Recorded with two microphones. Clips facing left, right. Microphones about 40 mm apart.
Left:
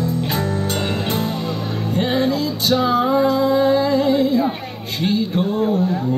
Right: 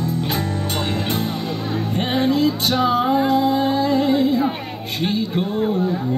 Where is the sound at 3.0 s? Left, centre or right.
Right.